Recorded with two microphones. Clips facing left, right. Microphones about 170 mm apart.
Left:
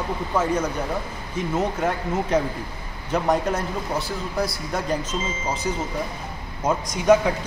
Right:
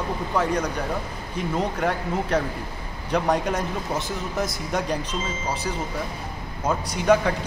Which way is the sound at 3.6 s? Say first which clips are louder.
Even; 20° right (ahead or behind).